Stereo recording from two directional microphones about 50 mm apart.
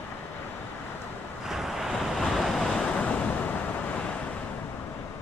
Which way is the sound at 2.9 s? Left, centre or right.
Left.